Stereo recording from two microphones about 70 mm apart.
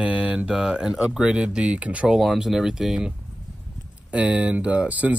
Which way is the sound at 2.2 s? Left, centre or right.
Centre.